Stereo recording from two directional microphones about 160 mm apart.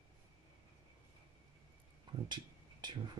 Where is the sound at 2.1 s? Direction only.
30° right (ahead or behind).